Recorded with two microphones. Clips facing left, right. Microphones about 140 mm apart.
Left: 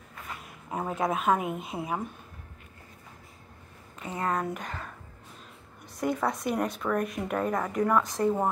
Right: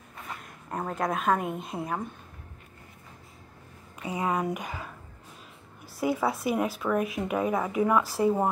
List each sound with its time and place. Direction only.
0.4 s speech: 5° left (ahead or behind)
4.0 s speech: 10° right (ahead or behind)
5.9 s speech: 5° right (ahead or behind)